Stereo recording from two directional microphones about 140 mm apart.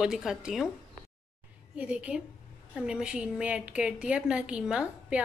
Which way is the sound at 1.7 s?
10° right (ahead or behind).